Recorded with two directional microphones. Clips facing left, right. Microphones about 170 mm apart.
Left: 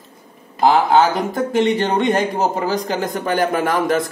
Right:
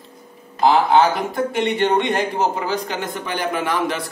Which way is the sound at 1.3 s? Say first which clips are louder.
Left 4 dB; 40° left (ahead or behind).